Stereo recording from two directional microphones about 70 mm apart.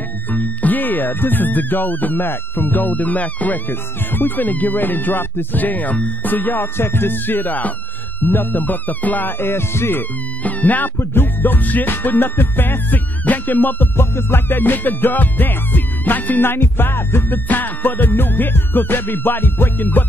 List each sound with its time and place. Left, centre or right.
0.3 s music: left